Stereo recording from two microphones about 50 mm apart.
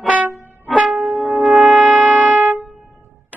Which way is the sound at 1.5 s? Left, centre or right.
Centre.